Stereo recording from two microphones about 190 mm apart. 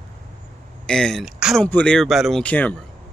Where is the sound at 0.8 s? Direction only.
5° left (ahead or behind).